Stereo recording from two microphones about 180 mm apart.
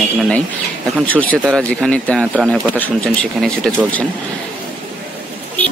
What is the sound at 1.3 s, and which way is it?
Speech, 5° left (ahead or behind).